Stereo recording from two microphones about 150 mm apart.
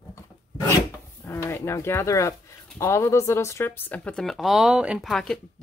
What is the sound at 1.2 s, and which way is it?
Speech, 15° left (ahead or behind).